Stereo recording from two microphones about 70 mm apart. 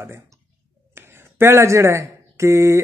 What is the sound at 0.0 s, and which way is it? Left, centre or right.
A man's voice, right.